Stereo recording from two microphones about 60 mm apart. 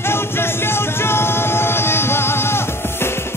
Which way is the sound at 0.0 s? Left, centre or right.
Left.